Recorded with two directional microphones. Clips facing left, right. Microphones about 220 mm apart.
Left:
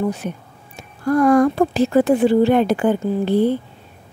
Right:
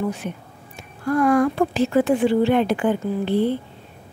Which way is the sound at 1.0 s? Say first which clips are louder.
Left 4 dB; 40° left (ahead or behind).